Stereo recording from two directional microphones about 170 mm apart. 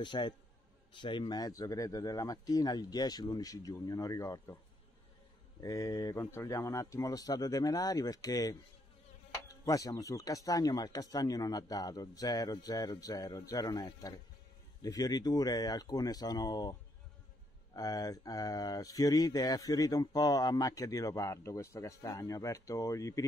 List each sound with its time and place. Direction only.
0.0 s speech: 25° left (ahead or behind)
5.6 s speech: 20° left (ahead or behind)
17.7 s speech: 20° left (ahead or behind)